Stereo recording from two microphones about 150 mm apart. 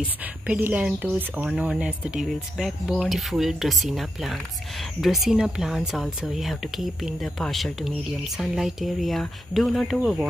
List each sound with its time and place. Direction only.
0.2 s speech: 10° right (ahead or behind)